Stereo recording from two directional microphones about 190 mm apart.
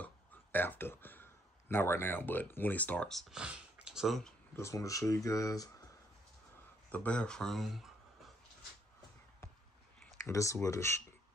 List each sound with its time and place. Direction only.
0.0 s speech: 10° left (ahead or behind)
4.6 s speech: 15° left (ahead or behind)
6.9 s speech: 5° left (ahead or behind)
10.2 s speech: 15° left (ahead or behind)